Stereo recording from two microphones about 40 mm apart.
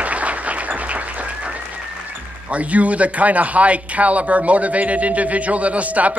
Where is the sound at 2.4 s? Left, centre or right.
Right.